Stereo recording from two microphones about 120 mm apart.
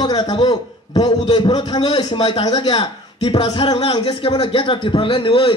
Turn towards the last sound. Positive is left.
turn(degrees=45)  # may be behind; listen again after turning